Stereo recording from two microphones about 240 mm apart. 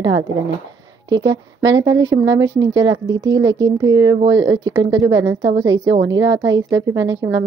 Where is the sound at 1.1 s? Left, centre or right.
Centre.